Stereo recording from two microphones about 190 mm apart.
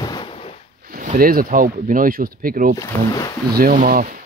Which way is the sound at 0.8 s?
50° right (ahead or behind).